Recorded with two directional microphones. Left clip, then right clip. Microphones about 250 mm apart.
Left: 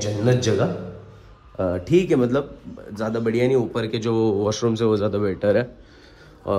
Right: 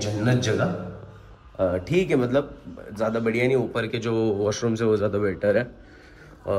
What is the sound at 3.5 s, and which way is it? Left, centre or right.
Speech, left.